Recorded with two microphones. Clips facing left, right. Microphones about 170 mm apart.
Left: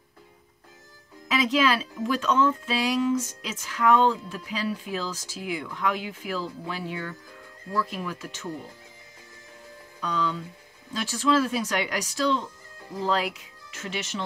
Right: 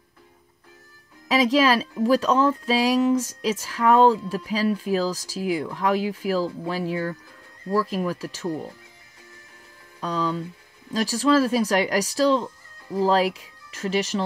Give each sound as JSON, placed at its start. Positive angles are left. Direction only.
{"t": 1.3, "sound": "speech", "side_deg": -35}
{"t": 9.9, "sound": "speech", "side_deg": -35}